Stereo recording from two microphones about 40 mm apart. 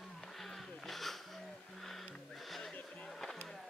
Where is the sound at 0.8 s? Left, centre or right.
Centre.